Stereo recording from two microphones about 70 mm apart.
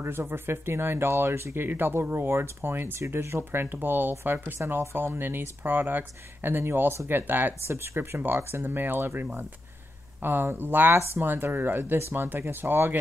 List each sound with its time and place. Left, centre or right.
0.0 s speech: right